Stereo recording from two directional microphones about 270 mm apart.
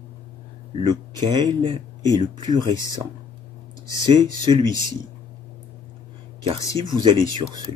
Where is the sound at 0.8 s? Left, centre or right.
Centre.